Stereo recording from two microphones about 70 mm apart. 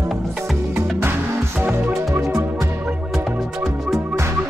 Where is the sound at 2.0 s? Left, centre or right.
Right.